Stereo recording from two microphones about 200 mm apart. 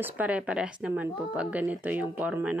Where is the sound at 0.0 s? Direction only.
5° right (ahead or behind).